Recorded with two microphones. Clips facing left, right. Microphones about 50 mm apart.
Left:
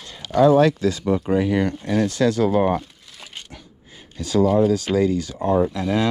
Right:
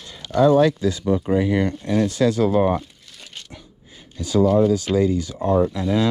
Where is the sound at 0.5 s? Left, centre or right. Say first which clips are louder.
Even; left.